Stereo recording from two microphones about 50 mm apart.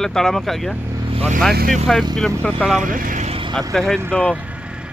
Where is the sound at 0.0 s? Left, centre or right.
Centre.